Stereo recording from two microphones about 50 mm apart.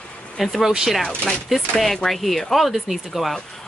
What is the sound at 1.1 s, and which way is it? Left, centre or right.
Speech, left.